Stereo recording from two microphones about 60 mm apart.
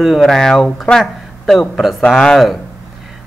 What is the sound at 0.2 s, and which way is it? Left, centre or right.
Speech, centre.